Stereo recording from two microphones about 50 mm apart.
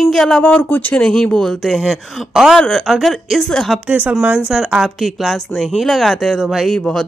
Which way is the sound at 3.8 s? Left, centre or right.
Right.